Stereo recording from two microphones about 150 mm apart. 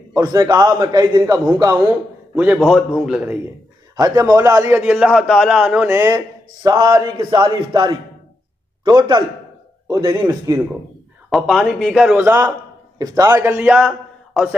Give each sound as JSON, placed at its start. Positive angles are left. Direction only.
{"t": 0.1, "sound": "a man's voice", "side_deg": -25}
{"t": 2.3, "sound": "a man's voice", "side_deg": -5}
{"t": 3.9, "sound": "a man's voice", "side_deg": -20}
{"t": 4.8, "sound": "a man's voice", "side_deg": -5}
{"t": 6.1, "sound": "a man's voice", "side_deg": -25}
{"t": 11.2, "sound": "a man's voice", "side_deg": 0}
{"t": 13.0, "sound": "a man's voice", "side_deg": -25}
{"t": 13.8, "sound": "a sound", "side_deg": 0}